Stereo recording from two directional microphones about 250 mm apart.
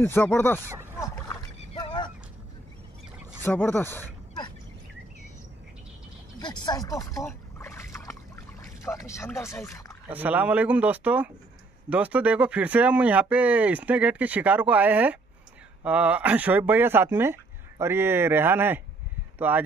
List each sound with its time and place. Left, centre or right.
0.0 s speech: centre
0.9 s a sound: centre
3.4 s speech: centre
6.4 s a sound: centre
8.8 s speech: centre
10.0 s speech: centre